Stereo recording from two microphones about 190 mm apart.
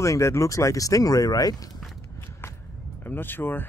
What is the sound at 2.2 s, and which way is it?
Walk, 15° left (ahead or behind).